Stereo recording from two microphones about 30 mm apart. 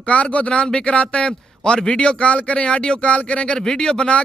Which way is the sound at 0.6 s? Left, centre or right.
Left.